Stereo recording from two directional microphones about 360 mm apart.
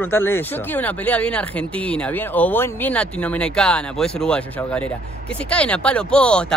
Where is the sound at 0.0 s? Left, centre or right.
Centre.